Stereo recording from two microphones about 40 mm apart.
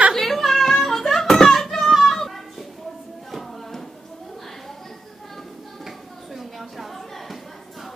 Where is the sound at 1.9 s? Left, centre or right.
Centre.